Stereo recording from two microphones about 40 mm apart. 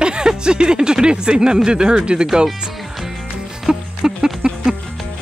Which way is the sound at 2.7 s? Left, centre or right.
Centre.